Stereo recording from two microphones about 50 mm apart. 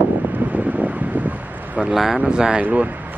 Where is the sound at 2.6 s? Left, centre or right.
Right.